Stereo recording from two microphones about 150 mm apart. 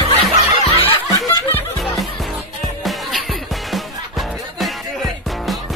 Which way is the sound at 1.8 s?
Centre (ahead or behind).